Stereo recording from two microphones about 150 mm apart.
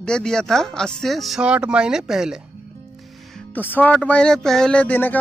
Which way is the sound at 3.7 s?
10° left (ahead or behind).